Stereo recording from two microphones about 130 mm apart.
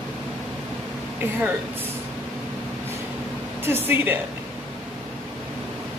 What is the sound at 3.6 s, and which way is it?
Speech, 15° right (ahead or behind).